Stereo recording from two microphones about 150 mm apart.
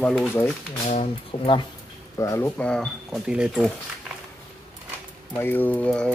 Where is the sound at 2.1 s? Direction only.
20° left (ahead or behind).